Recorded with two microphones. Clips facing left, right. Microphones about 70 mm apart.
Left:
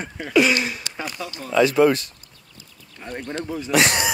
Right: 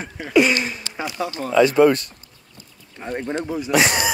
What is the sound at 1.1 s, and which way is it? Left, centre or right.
Speech, right.